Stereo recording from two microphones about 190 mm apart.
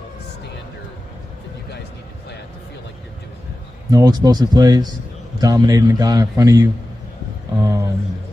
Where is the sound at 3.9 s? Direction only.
20° right (ahead or behind).